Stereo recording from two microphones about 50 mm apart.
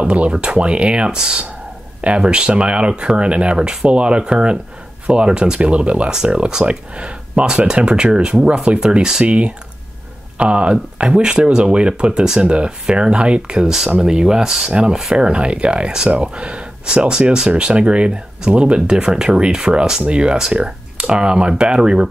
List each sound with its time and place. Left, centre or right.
0.0 s speech: right
9.2 s speech: right
14.7 s speech: right